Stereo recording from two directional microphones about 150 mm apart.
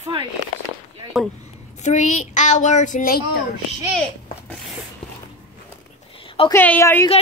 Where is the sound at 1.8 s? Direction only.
55° left (ahead or behind).